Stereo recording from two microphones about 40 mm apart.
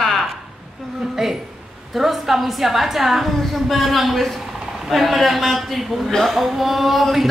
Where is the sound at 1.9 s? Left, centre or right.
Centre.